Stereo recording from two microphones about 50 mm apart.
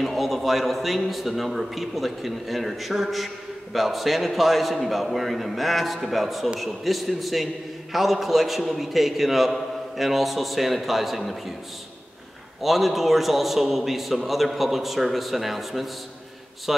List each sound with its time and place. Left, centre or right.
0.0 s a man's voice: centre
12.6 s a man's voice: centre